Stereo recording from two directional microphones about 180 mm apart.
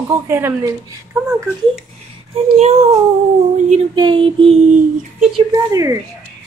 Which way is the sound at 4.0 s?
25° right (ahead or behind).